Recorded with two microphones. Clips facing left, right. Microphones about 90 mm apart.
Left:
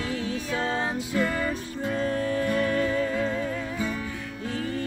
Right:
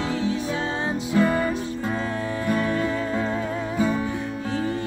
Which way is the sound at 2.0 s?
35° right (ahead or behind).